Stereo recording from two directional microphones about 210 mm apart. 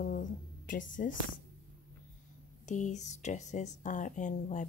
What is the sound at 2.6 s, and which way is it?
Speech, 35° left (ahead or behind).